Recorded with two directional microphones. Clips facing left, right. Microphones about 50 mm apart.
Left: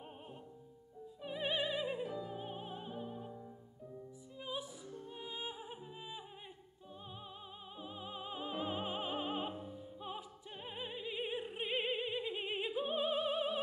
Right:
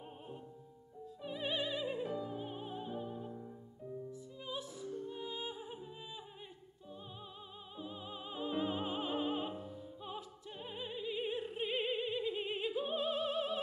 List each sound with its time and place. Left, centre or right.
1.2 s music: centre
4.4 s music: centre
9.9 s opera: centre